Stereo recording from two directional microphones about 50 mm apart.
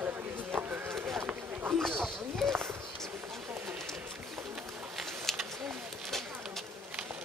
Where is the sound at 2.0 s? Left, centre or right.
Centre.